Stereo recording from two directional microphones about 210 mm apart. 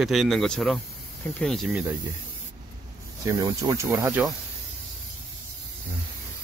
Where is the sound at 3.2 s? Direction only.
15° right (ahead or behind).